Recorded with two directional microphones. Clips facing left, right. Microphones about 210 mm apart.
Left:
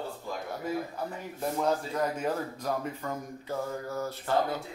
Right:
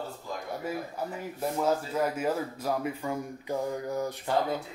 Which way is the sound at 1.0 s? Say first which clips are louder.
Right 1 dB; 10° right (ahead or behind).